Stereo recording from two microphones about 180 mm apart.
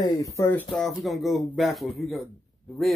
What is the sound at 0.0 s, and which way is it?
Speech, 20° left (ahead or behind).